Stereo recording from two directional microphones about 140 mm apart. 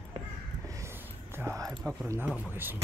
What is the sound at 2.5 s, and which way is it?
Speech, 15° right (ahead or behind).